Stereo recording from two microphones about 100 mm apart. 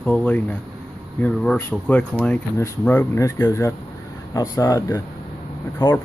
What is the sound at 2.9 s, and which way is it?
Speech, 25° left (ahead or behind).